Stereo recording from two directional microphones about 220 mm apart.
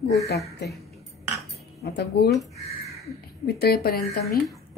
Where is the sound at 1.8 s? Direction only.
50° left (ahead or behind).